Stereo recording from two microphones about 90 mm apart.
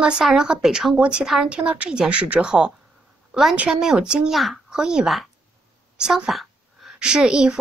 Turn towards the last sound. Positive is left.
turn(degrees=-10)  # may be behind; listen again after turning